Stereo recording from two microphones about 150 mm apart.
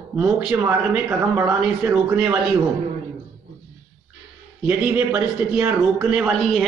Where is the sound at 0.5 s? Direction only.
20° right (ahead or behind).